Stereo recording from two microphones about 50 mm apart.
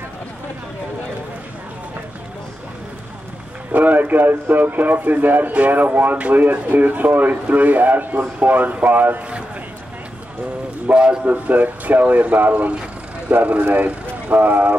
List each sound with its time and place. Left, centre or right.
3.7 s speech: right
10.9 s speech: right